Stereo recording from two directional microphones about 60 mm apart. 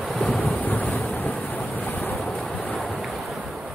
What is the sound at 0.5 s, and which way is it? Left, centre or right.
Thunder, left.